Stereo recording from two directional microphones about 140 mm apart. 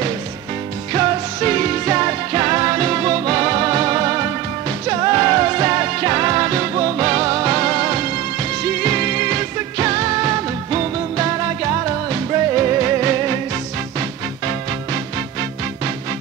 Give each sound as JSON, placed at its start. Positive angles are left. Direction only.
{"t": 0.9, "sound": "music", "side_deg": -25}